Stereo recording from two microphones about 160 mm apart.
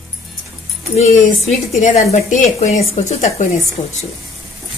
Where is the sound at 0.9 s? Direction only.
45° left (ahead or behind).